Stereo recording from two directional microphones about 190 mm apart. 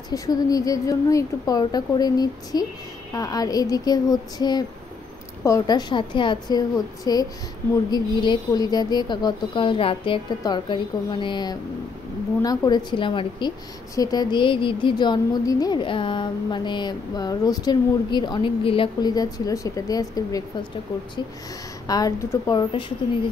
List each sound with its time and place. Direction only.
0.1 s speech: 20° left (ahead or behind)
21.8 s speech: 20° left (ahead or behind)